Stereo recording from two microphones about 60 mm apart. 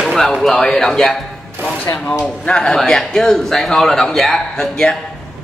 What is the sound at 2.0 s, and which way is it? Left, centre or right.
Speech, left.